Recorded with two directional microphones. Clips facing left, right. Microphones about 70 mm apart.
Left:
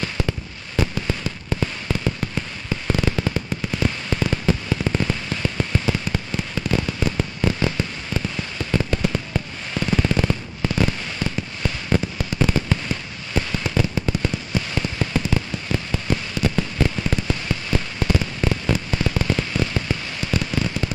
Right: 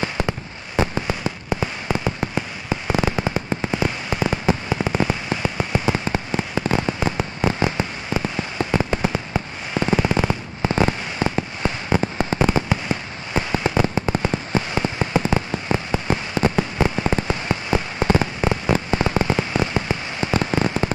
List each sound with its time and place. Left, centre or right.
0.0 s fireworks: right
4.7 s firecracker: centre
7.4 s fireworks: right
20.3 s firecracker: right